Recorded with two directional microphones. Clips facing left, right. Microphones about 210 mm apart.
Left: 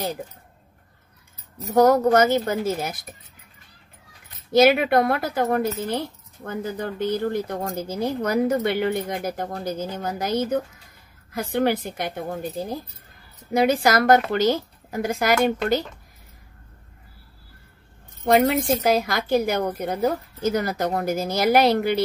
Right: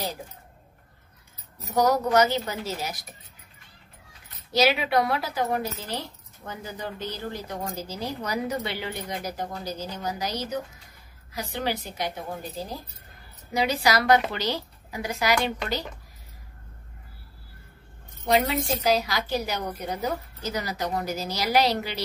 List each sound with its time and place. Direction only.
1.8 s speech: 50° left (ahead or behind)
4.5 s a woman's voice: 50° left (ahead or behind)
18.2 s speech: 50° left (ahead or behind)